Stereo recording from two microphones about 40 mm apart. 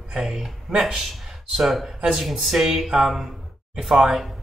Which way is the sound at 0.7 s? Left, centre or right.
Right.